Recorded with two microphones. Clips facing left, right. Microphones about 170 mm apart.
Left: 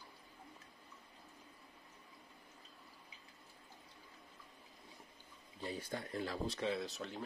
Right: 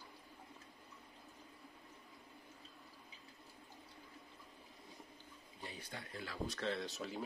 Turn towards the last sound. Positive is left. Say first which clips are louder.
# even
turn(degrees=0)  # may be behind; listen again after turning